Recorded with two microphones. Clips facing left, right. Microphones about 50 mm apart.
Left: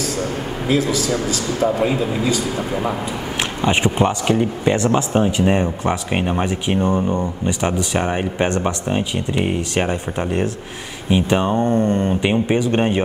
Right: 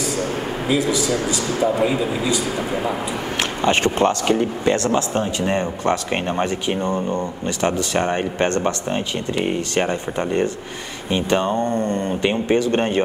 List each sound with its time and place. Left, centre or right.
0.7 s a man's voice: right
2.0 s a man's voice: centre
2.2 s a man's voice: right
3.6 s speech: centre